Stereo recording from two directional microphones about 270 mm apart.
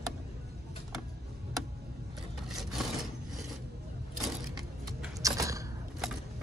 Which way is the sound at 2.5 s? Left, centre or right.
Centre.